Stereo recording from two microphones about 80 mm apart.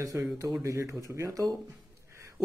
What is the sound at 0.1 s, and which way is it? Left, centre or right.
A man's voice, right.